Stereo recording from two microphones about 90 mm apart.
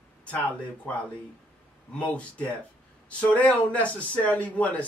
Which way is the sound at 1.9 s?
15° left (ahead or behind).